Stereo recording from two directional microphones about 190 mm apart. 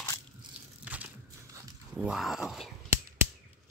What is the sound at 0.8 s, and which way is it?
Crushing, 5° right (ahead or behind).